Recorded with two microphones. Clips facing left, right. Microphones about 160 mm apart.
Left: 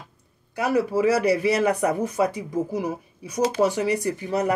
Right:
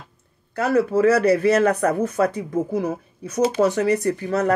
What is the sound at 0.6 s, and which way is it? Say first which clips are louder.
Speech: right 3 dB; 15° left (ahead or behind).